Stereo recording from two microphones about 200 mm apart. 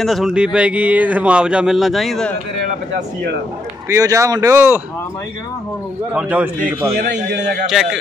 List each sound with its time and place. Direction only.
0.0 s speech: centre (ahead or behind)
3.9 s speech: 15° right (ahead or behind)
6.1 s speech: 10° right (ahead or behind)
7.0 s a man's voice: 55° right (ahead or behind)
7.6 s speech: centre (ahead or behind)